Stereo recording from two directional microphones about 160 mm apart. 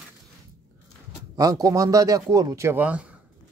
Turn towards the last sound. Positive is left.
turn(degrees=-10)  # may be behind; listen again after turning